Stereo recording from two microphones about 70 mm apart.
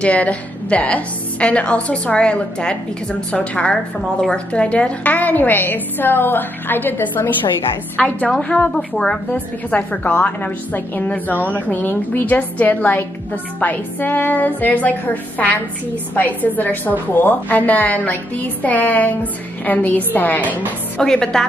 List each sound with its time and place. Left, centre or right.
0.0 s a woman's voice: centre
8.0 s a woman's voice: centre
21.0 s a woman's voice: centre